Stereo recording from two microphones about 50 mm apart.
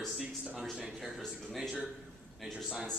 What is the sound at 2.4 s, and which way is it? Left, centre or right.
Speech, centre.